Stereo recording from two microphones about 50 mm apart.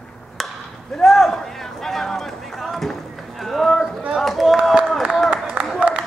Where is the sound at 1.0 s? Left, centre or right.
Centre.